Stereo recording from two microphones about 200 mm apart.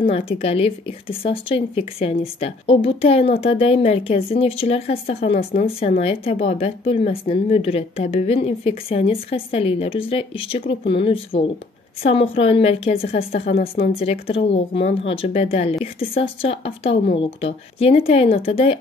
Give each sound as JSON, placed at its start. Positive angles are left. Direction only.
{"t": 0.1, "sound": "speech", "side_deg": 30}